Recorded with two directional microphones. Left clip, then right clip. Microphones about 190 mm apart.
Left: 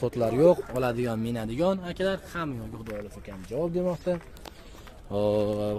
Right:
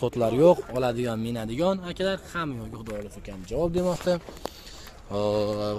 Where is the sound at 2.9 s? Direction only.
15° right (ahead or behind).